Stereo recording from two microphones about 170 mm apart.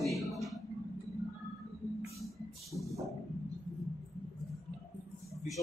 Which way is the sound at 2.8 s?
Centre (ahead or behind).